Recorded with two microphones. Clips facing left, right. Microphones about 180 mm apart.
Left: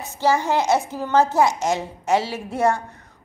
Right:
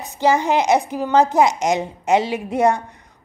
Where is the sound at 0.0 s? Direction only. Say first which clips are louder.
Right 3 dB; 15° right (ahead or behind).